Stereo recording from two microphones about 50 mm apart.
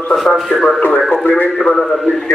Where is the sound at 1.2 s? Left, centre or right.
Left.